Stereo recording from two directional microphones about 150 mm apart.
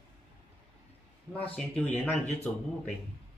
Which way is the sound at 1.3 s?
10° left (ahead or behind).